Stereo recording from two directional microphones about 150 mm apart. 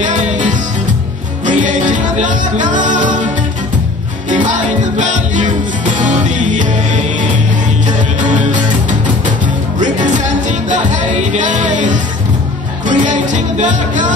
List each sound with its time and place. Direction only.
0.0 s music: 55° right (ahead or behind)
4.3 s music: 55° right (ahead or behind)